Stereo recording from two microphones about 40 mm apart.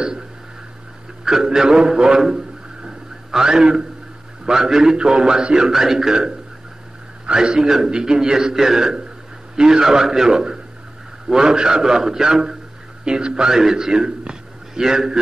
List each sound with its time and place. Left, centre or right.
1.2 s a man's voice: centre